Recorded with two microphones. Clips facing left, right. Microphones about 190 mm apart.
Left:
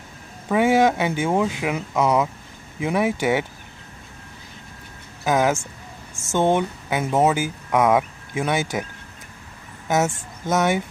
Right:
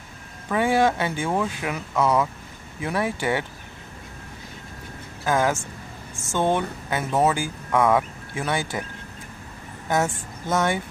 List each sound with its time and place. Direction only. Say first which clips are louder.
0.5 s speech: left 3 dB; 15° left (ahead or behind)
5.2 s speech: left 2 dB; 15° left (ahead or behind)
9.8 s speech: left 2 dB; 20° left (ahead or behind)